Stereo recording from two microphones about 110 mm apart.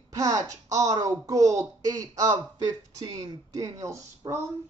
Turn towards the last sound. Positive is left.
turn(degrees=-25)  # may be behind; listen again after turning